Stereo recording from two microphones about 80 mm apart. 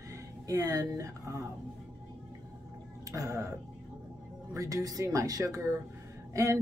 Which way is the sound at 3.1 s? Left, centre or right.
Right.